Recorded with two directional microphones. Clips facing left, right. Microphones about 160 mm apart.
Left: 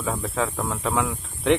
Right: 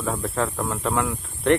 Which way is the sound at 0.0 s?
Centre (ahead or behind).